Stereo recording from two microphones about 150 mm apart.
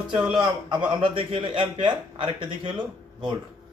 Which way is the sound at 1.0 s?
35° right (ahead or behind).